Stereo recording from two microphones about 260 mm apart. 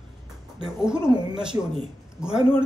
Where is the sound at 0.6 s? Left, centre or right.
Centre.